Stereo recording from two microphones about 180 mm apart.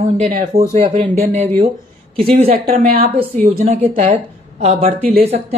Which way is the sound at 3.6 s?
35° right (ahead or behind).